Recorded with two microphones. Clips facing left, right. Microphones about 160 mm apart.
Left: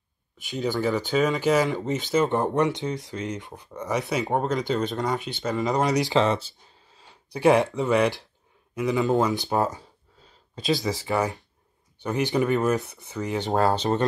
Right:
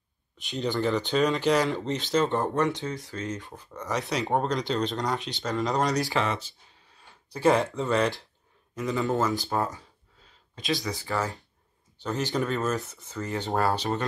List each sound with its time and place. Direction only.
0.4 s speech: 5° left (ahead or behind)
6.0 s speech: 30° left (ahead or behind)
7.3 s speech: 15° left (ahead or behind)
11.1 s speech: 20° left (ahead or behind)